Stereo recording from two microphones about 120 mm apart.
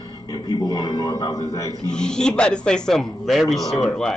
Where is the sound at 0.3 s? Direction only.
30° left (ahead or behind).